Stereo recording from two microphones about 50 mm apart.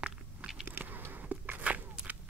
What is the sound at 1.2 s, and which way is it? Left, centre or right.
Dog, right.